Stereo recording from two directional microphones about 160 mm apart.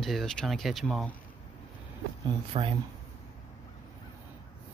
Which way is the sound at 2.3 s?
35° right (ahead or behind).